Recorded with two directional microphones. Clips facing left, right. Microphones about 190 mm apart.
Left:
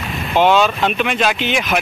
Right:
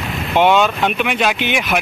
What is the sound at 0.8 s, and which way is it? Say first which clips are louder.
Speech: even; 5° right (ahead or behind).